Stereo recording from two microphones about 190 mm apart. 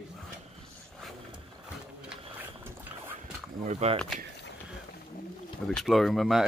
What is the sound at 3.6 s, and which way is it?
Speech, 35° right (ahead or behind).